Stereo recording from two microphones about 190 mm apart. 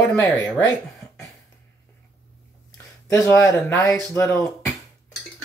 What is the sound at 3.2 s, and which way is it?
Speech, 15° left (ahead or behind).